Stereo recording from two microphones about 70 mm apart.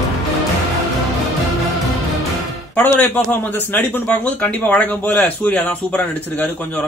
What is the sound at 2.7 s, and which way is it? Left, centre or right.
A man's voice, left.